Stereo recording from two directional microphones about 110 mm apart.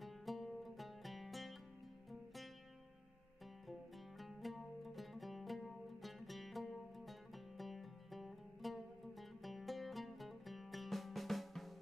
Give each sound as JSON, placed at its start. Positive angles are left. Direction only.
{"t": 0.0, "sound": "music", "side_deg": 0}
{"t": 4.2, "sound": "music", "side_deg": 0}